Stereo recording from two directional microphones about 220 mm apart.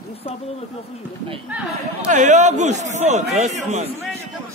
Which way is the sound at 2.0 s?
35° right (ahead or behind).